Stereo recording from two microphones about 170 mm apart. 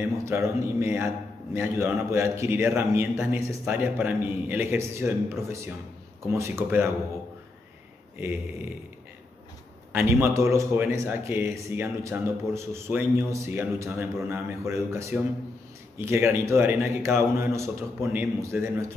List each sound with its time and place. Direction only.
0.2 s a man's voice: 15° right (ahead or behind)
9.9 s a man's voice: 15° right (ahead or behind)